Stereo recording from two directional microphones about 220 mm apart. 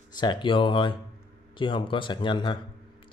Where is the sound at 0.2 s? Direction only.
20° left (ahead or behind).